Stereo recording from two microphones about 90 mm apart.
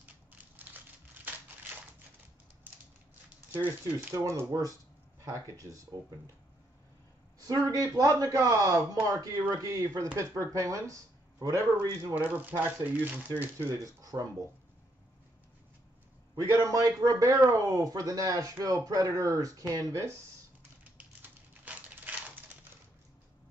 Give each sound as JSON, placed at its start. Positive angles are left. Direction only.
{"t": 0.3, "sound": "crushing", "side_deg": -20}
{"t": 3.5, "sound": "speech", "side_deg": -20}
{"t": 7.4, "sound": "speech", "side_deg": -40}
{"t": 12.2, "sound": "speech", "side_deg": -20}
{"t": 16.3, "sound": "speech", "side_deg": -45}
{"t": 21.0, "sound": "a sound", "side_deg": -15}